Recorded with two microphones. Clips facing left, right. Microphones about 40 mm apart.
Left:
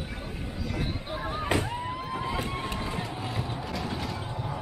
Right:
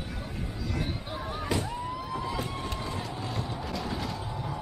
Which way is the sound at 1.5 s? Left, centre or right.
Left.